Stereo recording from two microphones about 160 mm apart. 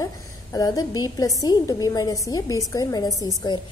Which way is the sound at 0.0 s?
20° left (ahead or behind).